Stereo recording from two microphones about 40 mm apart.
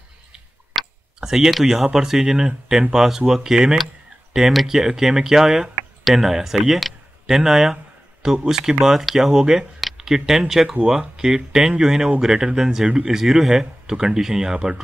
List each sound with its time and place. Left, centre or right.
1.2 s speech: centre